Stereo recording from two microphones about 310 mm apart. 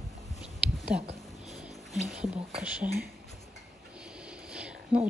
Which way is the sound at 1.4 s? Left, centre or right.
Centre.